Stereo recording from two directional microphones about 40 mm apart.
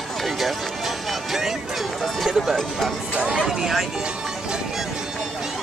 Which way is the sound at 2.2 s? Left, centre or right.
Centre.